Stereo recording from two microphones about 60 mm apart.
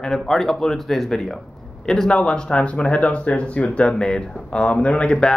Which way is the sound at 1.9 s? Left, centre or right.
Centre.